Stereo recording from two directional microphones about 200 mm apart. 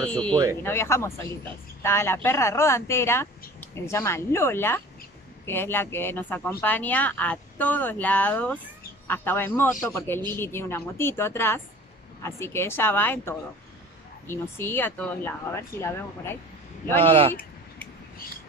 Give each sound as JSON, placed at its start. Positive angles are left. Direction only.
{"t": 0.0, "sound": "speech", "side_deg": 5}
{"t": 17.0, "sound": "speech", "side_deg": -30}